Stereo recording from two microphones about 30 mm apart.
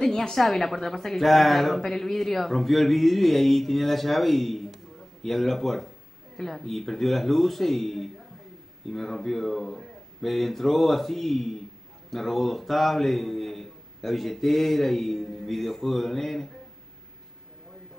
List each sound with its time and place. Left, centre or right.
0.0 s a woman's voice: left
0.3 s a woman's voice: centre